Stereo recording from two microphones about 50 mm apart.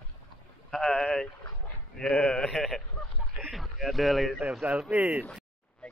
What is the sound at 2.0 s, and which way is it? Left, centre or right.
Speech, left.